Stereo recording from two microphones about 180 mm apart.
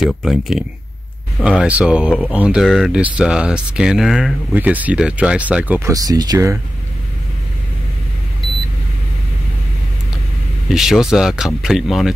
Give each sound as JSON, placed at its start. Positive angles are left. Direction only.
{"t": 0.0, "sound": "speech", "side_deg": 0}
{"t": 5.9, "sound": "speech", "side_deg": -20}
{"t": 10.7, "sound": "speech", "side_deg": 0}